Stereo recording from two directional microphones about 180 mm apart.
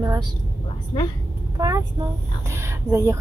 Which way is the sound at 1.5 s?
20° right (ahead or behind).